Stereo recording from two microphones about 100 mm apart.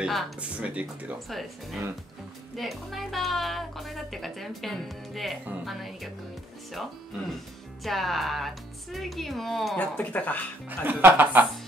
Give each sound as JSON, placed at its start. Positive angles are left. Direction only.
{"t": 0.0, "sound": "speech", "side_deg": 0}
{"t": 0.4, "sound": "speech", "side_deg": -15}
{"t": 1.3, "sound": "a woman's voice", "side_deg": 0}
{"t": 9.8, "sound": "speech", "side_deg": 15}
{"t": 10.9, "sound": "speech", "side_deg": -20}